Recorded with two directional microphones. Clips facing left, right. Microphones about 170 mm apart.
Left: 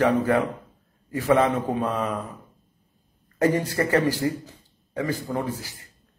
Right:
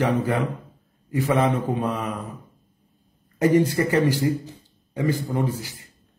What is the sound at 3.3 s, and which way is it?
Speech, 20° right (ahead or behind).